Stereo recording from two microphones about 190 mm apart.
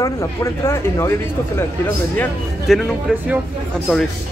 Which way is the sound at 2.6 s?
Centre (ahead or behind).